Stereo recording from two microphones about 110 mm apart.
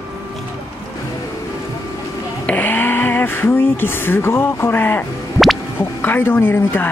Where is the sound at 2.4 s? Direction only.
15° left (ahead or behind).